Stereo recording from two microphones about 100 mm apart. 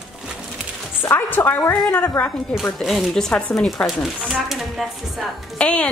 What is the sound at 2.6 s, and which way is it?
A woman's voice, 5° left (ahead or behind).